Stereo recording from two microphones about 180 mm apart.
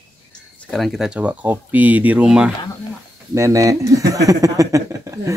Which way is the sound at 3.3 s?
15° right (ahead or behind).